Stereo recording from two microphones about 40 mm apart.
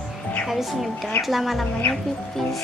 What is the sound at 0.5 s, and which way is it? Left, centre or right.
Music, centre.